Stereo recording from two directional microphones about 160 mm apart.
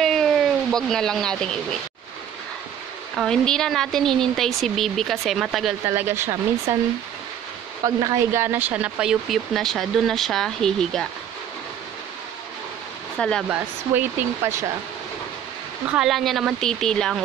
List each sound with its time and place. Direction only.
0.0 s speech: centre (ahead or behind)
3.2 s speech: 5° left (ahead or behind)
5.9 s speech: 15° right (ahead or behind); by 11.1 s 5° left (ahead or behind)
13.5 s speech: 15° right (ahead or behind)
15.9 s speech: centre (ahead or behind)